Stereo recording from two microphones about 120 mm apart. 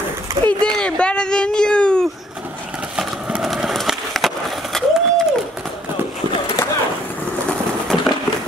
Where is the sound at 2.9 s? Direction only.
5° right (ahead or behind).